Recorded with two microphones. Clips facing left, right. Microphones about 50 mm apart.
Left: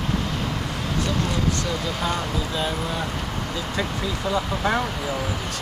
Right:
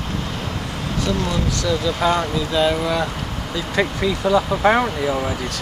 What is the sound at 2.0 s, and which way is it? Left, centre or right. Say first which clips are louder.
Speech: right 6 dB; right.